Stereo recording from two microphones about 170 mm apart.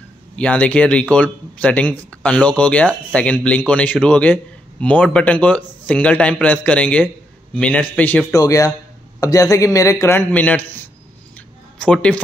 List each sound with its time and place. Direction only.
0.4 s speech: 5° left (ahead or behind)
8.4 s speech: 20° left (ahead or behind)
11.3 s a sound: 5° left (ahead or behind)